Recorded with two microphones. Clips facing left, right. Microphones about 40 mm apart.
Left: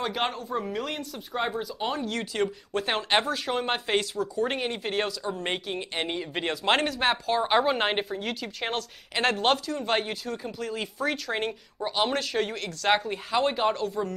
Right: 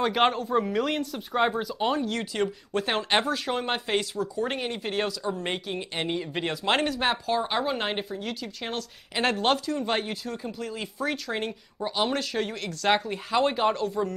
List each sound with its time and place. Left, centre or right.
0.0 s speech: centre
1.6 s speech: centre
7.4 s a woman's voice: left; by 14.1 s centre